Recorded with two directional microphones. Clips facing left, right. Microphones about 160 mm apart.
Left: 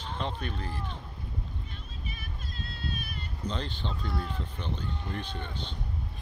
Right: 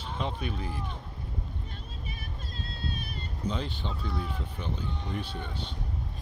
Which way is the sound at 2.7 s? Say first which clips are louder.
Right 1 dB; 30° right (ahead or behind).